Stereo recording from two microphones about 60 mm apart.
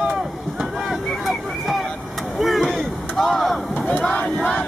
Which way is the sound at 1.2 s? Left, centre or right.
Centre.